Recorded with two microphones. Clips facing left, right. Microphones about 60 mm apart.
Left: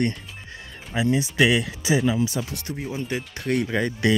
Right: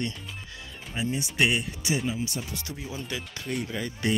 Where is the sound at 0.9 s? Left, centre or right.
Left.